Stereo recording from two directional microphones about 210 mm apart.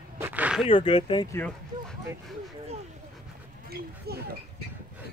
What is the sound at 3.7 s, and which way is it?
Speech, 50° right (ahead or behind).